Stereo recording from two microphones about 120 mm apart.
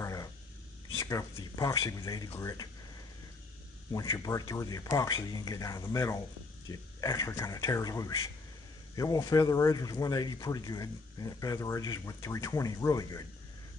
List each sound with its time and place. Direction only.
0.0 s a sound: 30° left (ahead or behind)
0.9 s speech: 25° left (ahead or behind)
3.9 s speech: 30° left (ahead or behind)